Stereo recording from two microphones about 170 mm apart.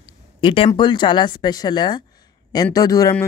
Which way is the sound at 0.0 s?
30° left (ahead or behind).